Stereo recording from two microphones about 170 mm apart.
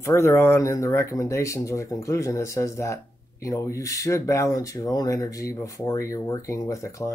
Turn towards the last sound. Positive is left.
turn(degrees=20)  # may be behind; listen again after turning